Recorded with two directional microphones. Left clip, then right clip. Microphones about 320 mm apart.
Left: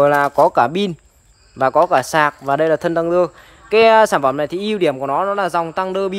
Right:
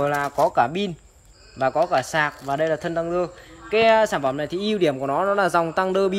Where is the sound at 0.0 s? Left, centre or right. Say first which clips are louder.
Left 8 dB; centre.